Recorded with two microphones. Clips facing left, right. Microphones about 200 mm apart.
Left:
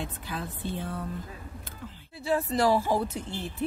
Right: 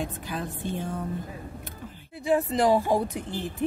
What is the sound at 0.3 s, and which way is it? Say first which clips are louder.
Speech: right 3 dB; 15° right (ahead or behind).